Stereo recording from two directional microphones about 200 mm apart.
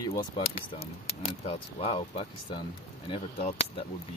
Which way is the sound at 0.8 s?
30° left (ahead or behind).